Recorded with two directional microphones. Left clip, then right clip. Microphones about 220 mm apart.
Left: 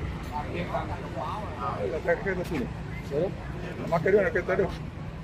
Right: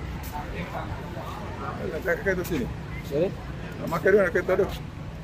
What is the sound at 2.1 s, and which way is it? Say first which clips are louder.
Speech: even; 50° right (ahead or behind).